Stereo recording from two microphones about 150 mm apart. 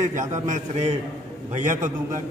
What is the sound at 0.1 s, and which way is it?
A man's voice, 55° right (ahead or behind).